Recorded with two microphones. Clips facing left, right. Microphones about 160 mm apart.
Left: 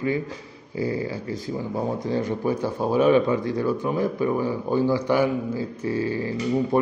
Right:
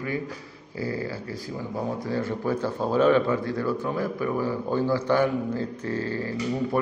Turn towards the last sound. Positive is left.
turn(degrees=15)  # may be behind; listen again after turning